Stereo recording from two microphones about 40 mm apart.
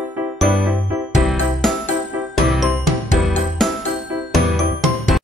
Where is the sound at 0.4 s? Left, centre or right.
Centre.